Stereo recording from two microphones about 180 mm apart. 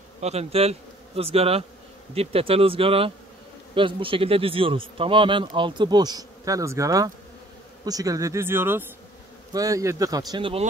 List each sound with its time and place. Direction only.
0.2 s a man's voice: 35° right (ahead or behind)